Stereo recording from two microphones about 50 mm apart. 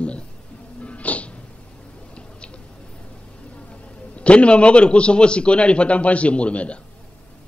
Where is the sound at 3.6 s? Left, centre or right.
Left.